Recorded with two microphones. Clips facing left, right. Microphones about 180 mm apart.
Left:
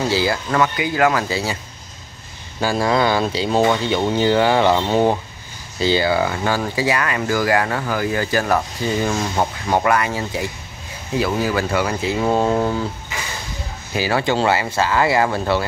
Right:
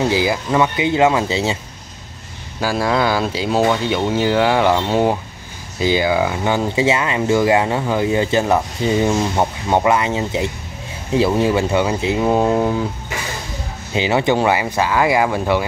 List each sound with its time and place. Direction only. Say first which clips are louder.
0.1 s speech: right 2 dB; 15° right (ahead or behind)
2.6 s speech: even; 5° right (ahead or behind)
6.5 s speech: right 3 dB; 20° right (ahead or behind)
12.2 s speech: right 1 dB; 10° right (ahead or behind)
13.9 s speech: right 3 dB; 20° right (ahead or behind)